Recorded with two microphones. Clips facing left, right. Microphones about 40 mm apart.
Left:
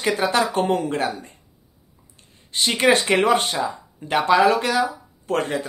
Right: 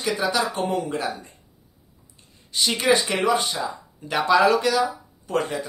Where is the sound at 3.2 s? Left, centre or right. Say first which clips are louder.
Left 3 dB; left.